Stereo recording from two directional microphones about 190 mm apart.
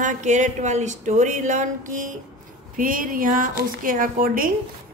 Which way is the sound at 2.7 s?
45° right (ahead or behind).